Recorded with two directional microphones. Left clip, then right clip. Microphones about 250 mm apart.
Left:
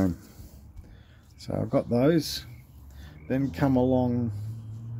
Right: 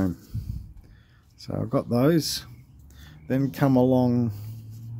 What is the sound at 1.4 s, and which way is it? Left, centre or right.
Speech, centre.